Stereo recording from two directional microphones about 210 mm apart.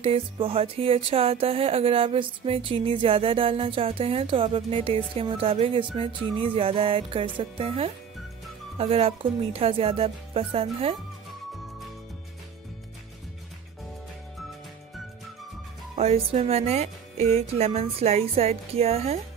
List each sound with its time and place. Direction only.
0.0 s music: 25° right (ahead or behind)
16.0 s music: 30° right (ahead or behind)